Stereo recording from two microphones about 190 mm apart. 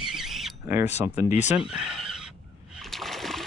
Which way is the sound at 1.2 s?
35° left (ahead or behind).